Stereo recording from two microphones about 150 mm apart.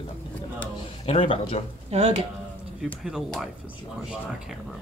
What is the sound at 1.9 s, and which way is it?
Speech, 50° right (ahead or behind).